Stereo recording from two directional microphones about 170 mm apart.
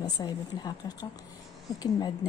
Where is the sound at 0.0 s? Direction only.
25° left (ahead or behind).